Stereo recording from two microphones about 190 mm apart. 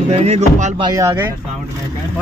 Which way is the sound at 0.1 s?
35° right (ahead or behind).